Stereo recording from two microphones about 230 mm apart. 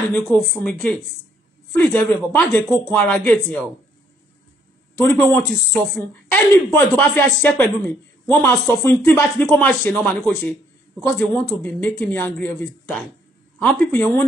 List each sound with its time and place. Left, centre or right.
0.1 s speech: centre
4.9 s speech: centre